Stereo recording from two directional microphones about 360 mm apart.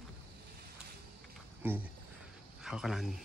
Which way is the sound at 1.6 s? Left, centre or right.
Centre.